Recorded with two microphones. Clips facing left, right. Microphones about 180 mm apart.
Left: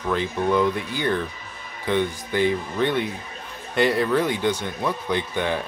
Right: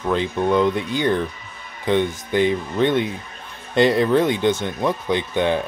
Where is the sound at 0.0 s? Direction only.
20° right (ahead or behind).